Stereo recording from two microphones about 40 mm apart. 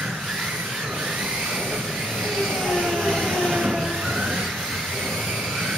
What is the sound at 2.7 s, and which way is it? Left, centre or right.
Train, centre.